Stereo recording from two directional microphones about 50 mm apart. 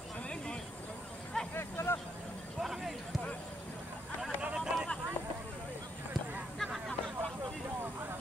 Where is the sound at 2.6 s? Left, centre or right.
Centre.